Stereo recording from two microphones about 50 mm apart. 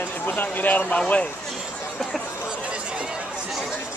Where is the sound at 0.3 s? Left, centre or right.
Left.